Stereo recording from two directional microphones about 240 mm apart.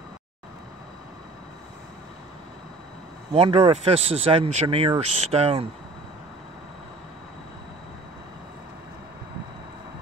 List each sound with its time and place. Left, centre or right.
3.3 s speech: right